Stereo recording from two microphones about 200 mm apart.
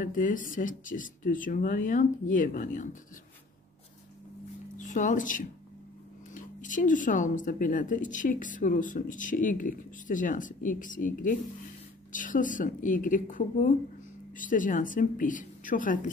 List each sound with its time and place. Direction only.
0.0 s speech: 40° left (ahead or behind)
4.7 s speech: 40° left (ahead or behind)